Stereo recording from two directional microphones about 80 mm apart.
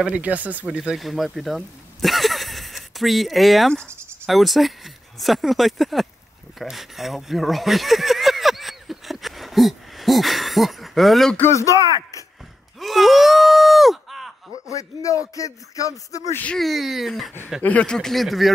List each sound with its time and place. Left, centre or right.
0.0 s speech: centre
0.7 s speech: centre
6.6 s a sound: centre
11.3 s speech: left
11.7 s speech: right
12.8 s groan: centre
14.7 s speech: left
16.5 s speech: centre
17.6 s speech: centre